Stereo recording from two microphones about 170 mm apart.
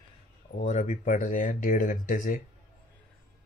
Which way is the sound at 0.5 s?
45° left (ahead or behind).